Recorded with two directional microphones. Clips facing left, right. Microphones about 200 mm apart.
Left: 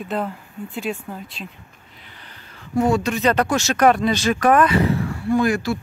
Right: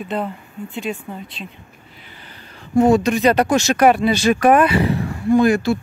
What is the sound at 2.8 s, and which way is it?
Speech, 20° right (ahead or behind).